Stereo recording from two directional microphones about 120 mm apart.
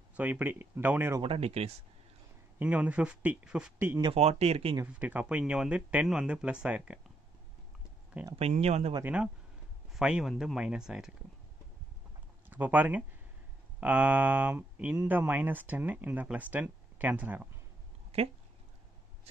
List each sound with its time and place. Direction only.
0.1 s speech: 15° right (ahead or behind)
1.2 s speech: 55° right (ahead or behind)
2.6 s speech: 10° right (ahead or behind)
4.0 s speech: 55° right (ahead or behind)
4.8 s speech: 15° right (ahead or behind)
8.4 s speech: 60° right (ahead or behind)
9.0 s speech: 10° right (ahead or behind)
12.4 s speech: 15° right (ahead or behind)